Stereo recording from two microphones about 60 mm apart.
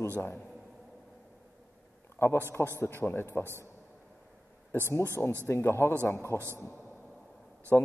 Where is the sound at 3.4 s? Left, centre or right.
Right.